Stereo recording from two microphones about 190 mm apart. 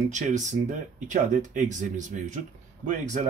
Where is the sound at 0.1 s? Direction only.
40° right (ahead or behind).